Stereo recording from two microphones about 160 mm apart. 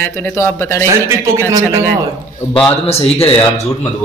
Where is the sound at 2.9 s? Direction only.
40° left (ahead or behind).